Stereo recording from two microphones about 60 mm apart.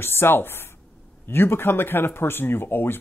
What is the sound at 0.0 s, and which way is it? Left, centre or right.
Speech, left.